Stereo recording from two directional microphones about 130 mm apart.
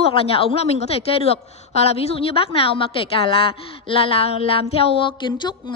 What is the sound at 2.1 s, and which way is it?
A woman's voice, 45° left (ahead or behind).